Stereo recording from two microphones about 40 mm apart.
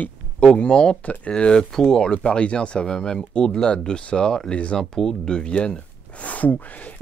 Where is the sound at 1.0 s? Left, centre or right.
Left.